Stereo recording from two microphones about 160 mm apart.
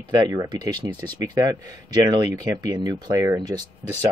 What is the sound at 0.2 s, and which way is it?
Speech, 25° right (ahead or behind).